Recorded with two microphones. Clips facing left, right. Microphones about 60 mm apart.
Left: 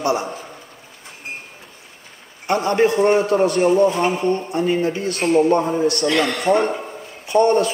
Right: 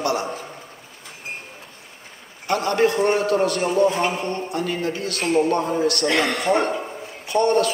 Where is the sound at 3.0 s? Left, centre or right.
Centre.